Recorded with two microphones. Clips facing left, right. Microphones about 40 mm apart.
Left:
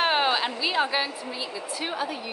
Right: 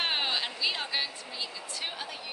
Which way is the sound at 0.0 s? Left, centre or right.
Centre.